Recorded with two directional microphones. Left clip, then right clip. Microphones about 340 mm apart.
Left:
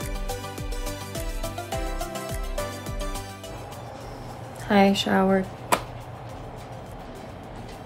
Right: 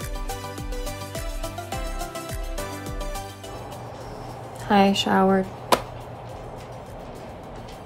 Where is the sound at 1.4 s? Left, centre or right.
Centre.